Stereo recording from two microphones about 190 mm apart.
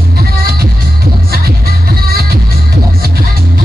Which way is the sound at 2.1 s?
55° right (ahead or behind).